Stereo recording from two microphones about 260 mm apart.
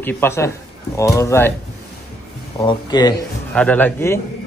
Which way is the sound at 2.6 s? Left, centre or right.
Centre.